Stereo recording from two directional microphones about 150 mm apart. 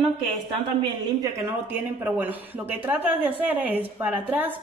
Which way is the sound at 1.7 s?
10° right (ahead or behind).